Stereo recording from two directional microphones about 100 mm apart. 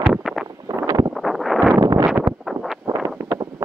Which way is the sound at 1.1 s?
Centre (ahead or behind).